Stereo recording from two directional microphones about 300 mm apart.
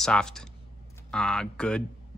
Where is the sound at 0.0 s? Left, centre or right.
Centre.